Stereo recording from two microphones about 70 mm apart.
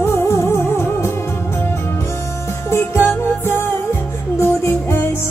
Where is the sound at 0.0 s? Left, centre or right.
Left.